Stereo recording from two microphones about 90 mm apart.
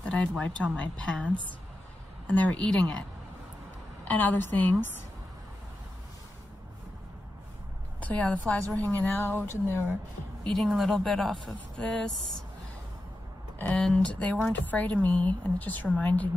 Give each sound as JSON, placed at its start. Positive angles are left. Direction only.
{"t": 0.0, "sound": "a sound", "side_deg": 15}
{"t": 0.4, "sound": "a woman's voice", "side_deg": 10}
{"t": 8.0, "sound": "a woman's voice", "side_deg": 15}
{"t": 10.4, "sound": "speech", "side_deg": 5}
{"t": 13.7, "sound": "a woman's voice", "side_deg": 10}